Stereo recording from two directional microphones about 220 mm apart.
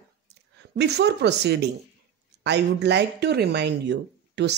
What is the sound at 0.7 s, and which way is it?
Speech, 50° right (ahead or behind).